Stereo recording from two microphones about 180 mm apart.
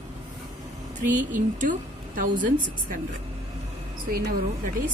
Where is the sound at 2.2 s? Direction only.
45° right (ahead or behind).